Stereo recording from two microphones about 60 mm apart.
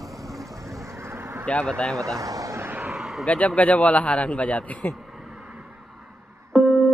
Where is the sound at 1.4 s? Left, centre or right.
Centre.